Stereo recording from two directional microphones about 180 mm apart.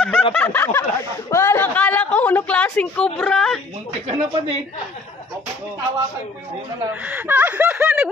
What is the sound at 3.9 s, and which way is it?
Speech, 30° right (ahead or behind).